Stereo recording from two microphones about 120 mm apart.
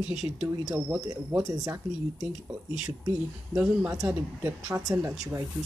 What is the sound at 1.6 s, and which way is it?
Speech, 30° right (ahead or behind).